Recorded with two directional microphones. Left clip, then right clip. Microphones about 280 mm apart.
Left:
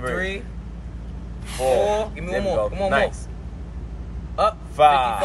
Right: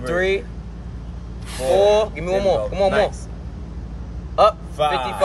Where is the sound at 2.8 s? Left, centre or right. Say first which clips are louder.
Right 3 dB; centre.